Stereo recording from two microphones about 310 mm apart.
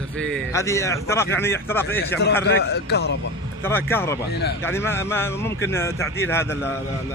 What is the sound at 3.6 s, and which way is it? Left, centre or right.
A man's voice, centre.